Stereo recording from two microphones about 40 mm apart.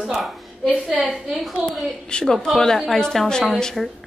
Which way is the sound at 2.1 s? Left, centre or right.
Left.